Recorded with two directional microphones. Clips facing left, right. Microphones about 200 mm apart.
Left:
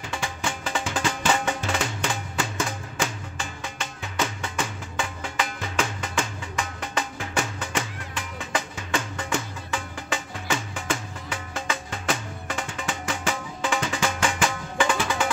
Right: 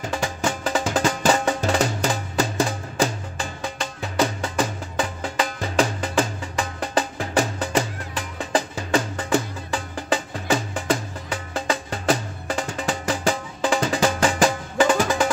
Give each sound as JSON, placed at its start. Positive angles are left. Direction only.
{"t": 0.0, "sound": "music", "side_deg": -40}